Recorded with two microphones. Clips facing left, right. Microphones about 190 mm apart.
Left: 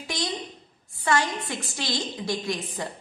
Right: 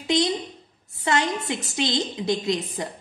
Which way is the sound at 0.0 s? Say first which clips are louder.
Right 8 dB; 20° right (ahead or behind).